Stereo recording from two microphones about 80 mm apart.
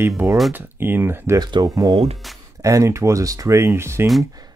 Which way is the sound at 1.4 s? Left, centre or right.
Right.